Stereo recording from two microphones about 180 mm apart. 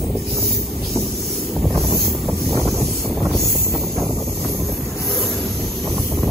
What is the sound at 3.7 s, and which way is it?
Wind noise, centre (ahead or behind).